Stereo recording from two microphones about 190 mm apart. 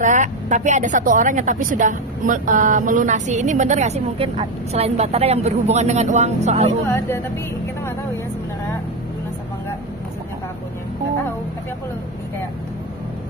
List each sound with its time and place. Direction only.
0.0 s a woman's voice: 40° right (ahead or behind)